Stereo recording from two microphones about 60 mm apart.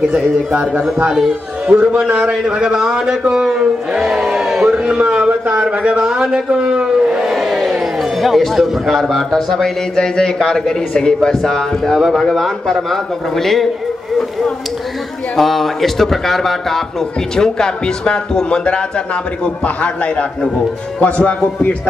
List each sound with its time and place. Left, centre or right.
0.1 s a man's voice: centre
4.6 s a man's voice: centre
7.2 s crowd: centre
8.2 s a man's voice: centre
9.3 s a man's voice: centre
15.3 s a man's voice: centre